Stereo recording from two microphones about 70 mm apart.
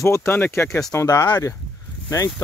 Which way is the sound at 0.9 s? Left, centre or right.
Left.